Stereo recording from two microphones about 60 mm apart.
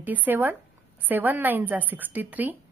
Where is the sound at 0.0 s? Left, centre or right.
Right.